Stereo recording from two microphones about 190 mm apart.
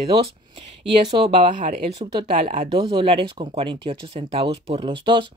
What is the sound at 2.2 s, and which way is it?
Speech, 35° right (ahead or behind).